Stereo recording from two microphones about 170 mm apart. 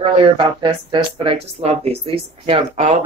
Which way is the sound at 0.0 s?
30° right (ahead or behind).